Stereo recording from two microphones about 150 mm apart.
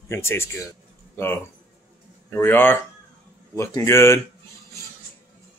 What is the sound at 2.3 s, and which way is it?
A man's voice, 15° left (ahead or behind).